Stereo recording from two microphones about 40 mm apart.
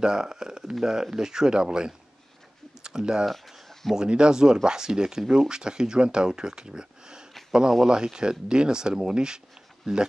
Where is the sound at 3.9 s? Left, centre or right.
Right.